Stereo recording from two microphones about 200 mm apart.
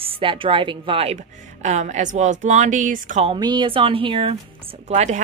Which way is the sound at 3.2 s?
25° right (ahead or behind).